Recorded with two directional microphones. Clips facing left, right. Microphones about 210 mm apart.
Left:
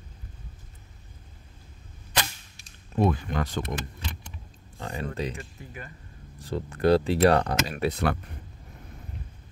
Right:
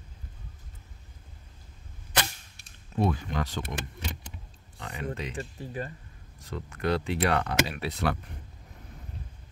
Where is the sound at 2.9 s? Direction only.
50° left (ahead or behind).